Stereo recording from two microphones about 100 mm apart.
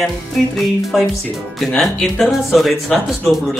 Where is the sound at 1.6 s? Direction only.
5° left (ahead or behind).